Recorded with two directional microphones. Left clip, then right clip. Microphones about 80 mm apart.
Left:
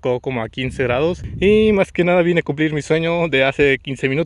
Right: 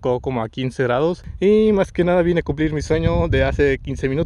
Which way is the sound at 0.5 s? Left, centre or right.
Right.